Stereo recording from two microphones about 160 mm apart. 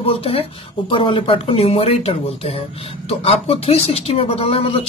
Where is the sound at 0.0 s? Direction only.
35° left (ahead or behind).